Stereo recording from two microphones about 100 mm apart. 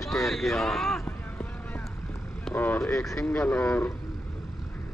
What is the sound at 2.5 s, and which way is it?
Speech, 20° left (ahead or behind).